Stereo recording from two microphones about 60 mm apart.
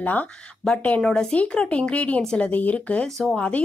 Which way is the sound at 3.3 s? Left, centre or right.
Left.